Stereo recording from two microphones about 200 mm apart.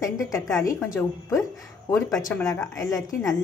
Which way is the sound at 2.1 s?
Centre (ahead or behind).